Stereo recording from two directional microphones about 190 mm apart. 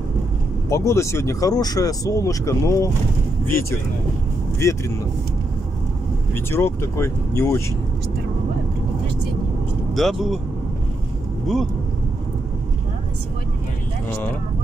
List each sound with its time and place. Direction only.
0.7 s speech: 15° left (ahead or behind)
4.6 s speech: 15° left (ahead or behind)
6.3 s speech: 15° left (ahead or behind)
9.9 s speech: centre (ahead or behind)